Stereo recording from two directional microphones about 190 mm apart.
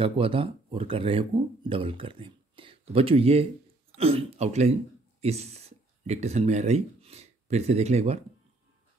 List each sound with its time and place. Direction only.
0.0 s speech: 30° right (ahead or behind)